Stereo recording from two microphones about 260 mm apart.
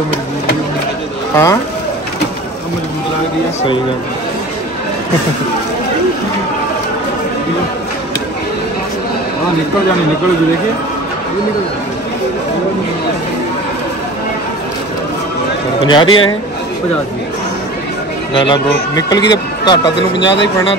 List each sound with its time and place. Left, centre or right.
1.3 s speech: centre
15.8 s speech: centre
18.3 s speech: centre